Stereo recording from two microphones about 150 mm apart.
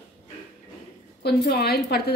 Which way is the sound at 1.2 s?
90° left.